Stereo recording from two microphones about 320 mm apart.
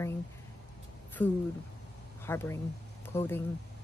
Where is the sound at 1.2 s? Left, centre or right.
Centre.